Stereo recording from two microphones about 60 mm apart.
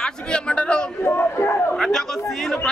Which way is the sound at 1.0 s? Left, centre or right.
Left.